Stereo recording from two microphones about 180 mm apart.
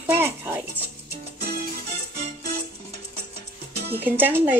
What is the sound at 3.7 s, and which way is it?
Music, 65° right (ahead or behind).